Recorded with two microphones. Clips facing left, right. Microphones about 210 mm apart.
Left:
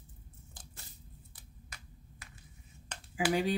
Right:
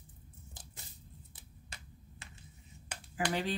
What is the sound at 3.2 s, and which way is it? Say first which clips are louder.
Speech: left 4 dB; 10° left (ahead or behind).